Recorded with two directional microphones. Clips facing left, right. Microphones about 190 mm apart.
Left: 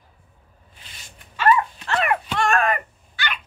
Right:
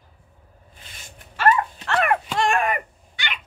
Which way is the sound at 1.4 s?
45° right (ahead or behind).